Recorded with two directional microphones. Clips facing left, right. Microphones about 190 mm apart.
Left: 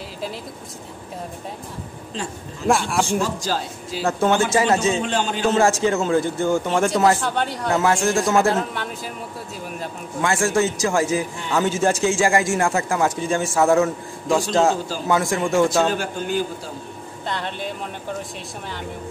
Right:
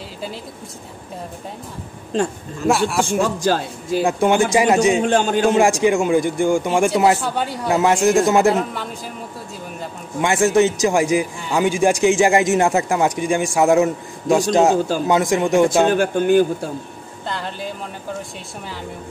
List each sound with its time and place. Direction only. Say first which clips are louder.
2.6 s speech: right 2 dB; centre (ahead or behind)
3.1 s a man's voice: right 4 dB; 55° right (ahead or behind)
4.0 s a man's voice: right 2 dB; 15° right (ahead or behind)
5.0 s a man's voice: right 6 dB; 50° right (ahead or behind)
5.5 s a man's voice: right 1 dB; 15° right (ahead or behind)
7.8 s a man's voice: right 6 dB; 20° right (ahead or behind)
10.2 s a man's voice: right 5 dB; 20° right (ahead or behind)
15.9 s a man's voice: right 9 dB; 55° right (ahead or behind)
17.3 s speech: even; centre (ahead or behind)